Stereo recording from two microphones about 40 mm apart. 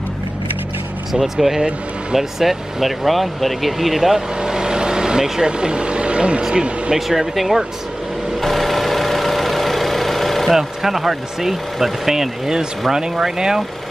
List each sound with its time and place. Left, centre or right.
1.2 s speech: centre
4.4 s vehicle: centre
6.4 s speech: centre
7.1 s speech: centre
8.4 s vehicle: centre
10.5 s speech: centre